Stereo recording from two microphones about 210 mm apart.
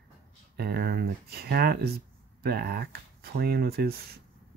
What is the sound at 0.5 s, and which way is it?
Speech, 50° right (ahead or behind).